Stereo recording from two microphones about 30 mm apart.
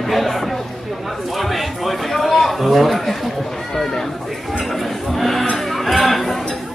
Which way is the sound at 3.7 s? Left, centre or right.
Centre.